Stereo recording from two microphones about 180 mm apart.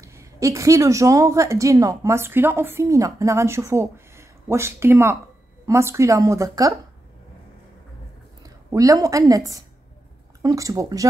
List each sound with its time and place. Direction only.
0.0 s a woman's voice: 15° right (ahead or behind)
8.4 s a woman's voice: 20° right (ahead or behind)